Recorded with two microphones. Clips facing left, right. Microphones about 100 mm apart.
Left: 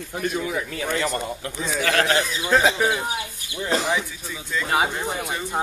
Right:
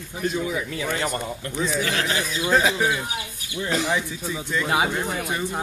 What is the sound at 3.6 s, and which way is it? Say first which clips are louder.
Speech: left 1 dB; 35° left (ahead or behind).